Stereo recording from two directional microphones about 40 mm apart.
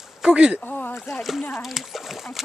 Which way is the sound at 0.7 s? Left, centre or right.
Left.